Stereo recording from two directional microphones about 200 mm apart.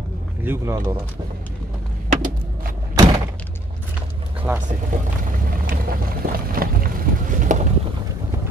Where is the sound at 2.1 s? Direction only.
45° right (ahead or behind).